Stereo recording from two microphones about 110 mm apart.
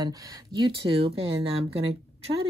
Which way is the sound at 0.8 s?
55° right (ahead or behind).